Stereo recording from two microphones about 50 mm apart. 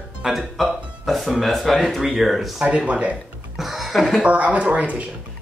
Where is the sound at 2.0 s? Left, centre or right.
Centre.